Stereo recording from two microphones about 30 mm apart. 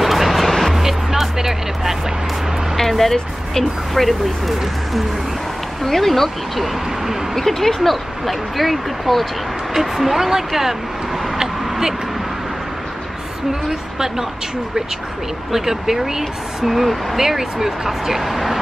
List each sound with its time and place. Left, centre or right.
0.0 s music: centre
0.7 s music: centre
2.8 s speech: centre
9.8 s speech: centre
13.7 s speech: centre
15.5 s speech: centre